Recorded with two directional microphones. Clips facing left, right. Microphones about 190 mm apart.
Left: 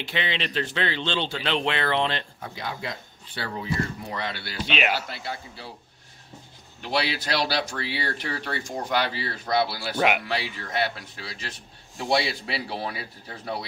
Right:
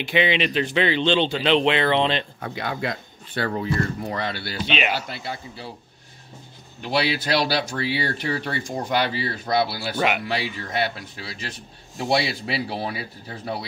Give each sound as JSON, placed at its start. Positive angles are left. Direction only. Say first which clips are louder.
{"t": 0.0, "sound": "speech", "louder": "right 8 dB", "side_deg": -15}
{"t": 2.4, "sound": "speech", "louder": "right 6 dB", "side_deg": -60}
{"t": 4.1, "sound": "speech", "louder": "right 4 dB", "side_deg": -35}
{"t": 4.6, "sound": "speech", "louder": "right 1 dB", "side_deg": 5}
{"t": 5.0, "sound": "speech", "louder": "right 2 dB", "side_deg": -15}
{"t": 6.8, "sound": "speech", "louder": "right 4 dB", "side_deg": -10}
{"t": 9.9, "sound": "speech", "louder": "even", "side_deg": 10}
{"t": 10.2, "sound": "speech", "louder": "right 3 dB", "side_deg": -15}